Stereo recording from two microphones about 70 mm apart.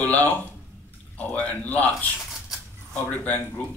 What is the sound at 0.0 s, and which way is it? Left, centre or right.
Speech, left.